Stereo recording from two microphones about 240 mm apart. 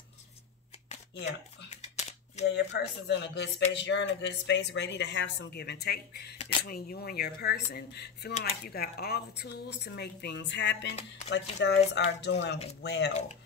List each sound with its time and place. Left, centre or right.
1.2 s camera: left
2.4 s speech: left